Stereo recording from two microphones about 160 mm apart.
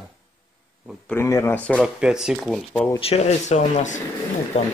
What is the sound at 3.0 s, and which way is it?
Speech, 40° left (ahead or behind).